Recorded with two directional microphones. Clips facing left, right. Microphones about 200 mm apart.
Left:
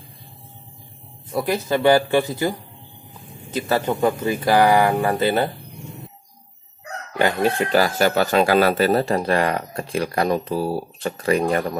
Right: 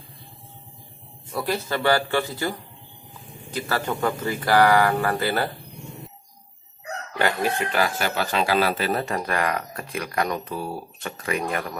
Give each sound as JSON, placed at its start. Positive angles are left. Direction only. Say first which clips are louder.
{"t": 1.3, "sound": "speech", "louder": "left 5 dB", "side_deg": 20}
{"t": 7.2, "sound": "speech", "louder": "left 4 dB", "side_deg": 25}
{"t": 7.6, "sound": "speech", "louder": "left 6 dB", "side_deg": 40}